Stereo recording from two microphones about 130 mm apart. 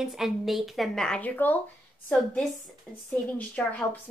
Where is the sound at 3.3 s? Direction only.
10° left (ahead or behind).